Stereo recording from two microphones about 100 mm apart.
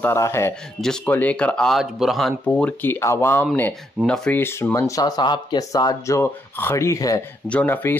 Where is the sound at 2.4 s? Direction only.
15° left (ahead or behind).